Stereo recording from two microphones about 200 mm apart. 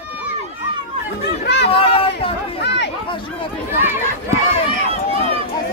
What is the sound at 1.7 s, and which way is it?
Speech, 30° left (ahead or behind).